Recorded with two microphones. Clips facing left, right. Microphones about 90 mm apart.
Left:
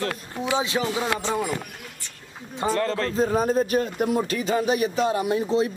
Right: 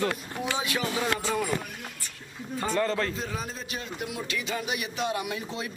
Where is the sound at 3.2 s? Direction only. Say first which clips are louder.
Left 14 dB; 45° left (ahead or behind).